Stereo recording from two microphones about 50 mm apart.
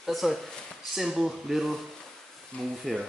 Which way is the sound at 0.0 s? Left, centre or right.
Centre.